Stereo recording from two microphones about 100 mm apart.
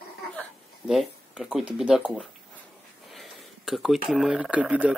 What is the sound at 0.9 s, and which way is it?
Speech, 5° right (ahead or behind).